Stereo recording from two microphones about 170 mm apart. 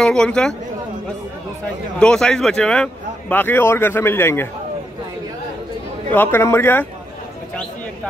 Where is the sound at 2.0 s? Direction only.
5° left (ahead or behind).